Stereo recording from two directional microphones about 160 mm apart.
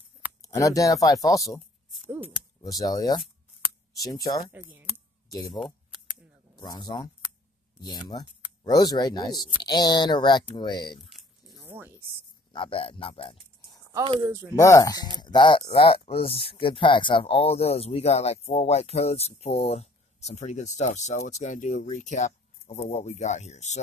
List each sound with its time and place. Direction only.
0.4 s speech: 20° left (ahead or behind)
2.0 s a sound: 10° right (ahead or behind)
2.6 s speech: 20° left (ahead or behind)
4.5 s speech: 10° right (ahead or behind)
6.5 s speech: 25° left (ahead or behind)
11.1 s a sound: centre (ahead or behind)
11.6 s a sound: 15° right (ahead or behind)
12.5 s speech: 35° left (ahead or behind)
14.0 s speech: 35° right (ahead or behind)
14.5 s speech: 20° left (ahead or behind); by 23.8 s 45° left (ahead or behind)